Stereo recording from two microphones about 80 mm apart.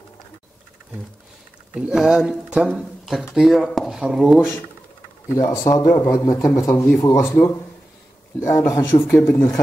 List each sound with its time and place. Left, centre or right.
1.7 s speech: centre
5.5 s speech: left